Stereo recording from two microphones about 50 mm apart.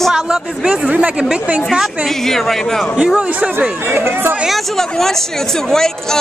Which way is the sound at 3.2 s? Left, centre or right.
Right.